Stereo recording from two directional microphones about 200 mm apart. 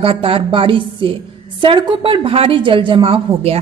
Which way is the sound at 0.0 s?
25° right (ahead or behind).